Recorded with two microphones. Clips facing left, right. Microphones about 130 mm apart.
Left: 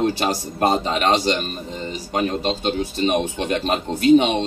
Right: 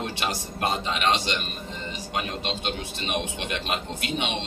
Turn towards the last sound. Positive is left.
turn(degrees=40)  # may be behind; listen again after turning